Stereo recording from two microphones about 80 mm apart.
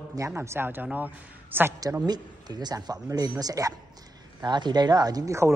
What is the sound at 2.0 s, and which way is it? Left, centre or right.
Speech, right.